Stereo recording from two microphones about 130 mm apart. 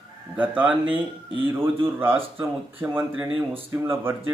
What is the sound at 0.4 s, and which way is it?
Speech, 10° right (ahead or behind).